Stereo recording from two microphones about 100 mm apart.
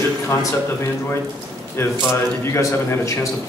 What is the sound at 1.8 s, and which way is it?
A man's voice, 25° left (ahead or behind).